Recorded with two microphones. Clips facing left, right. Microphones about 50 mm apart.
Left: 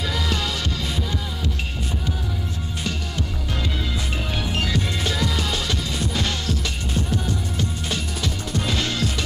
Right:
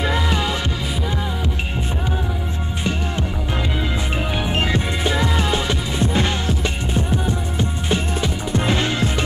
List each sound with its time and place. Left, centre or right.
0.0 s music: right
4.5 s music: right